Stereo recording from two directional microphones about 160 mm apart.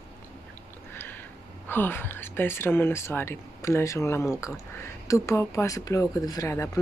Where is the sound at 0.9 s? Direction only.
10° left (ahead or behind).